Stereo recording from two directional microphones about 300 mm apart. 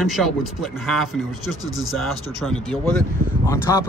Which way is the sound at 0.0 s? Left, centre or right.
Centre.